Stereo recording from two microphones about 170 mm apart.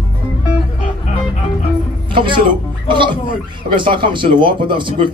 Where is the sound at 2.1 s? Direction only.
30° right (ahead or behind).